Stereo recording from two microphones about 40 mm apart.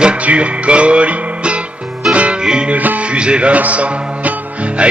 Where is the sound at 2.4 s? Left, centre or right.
Right.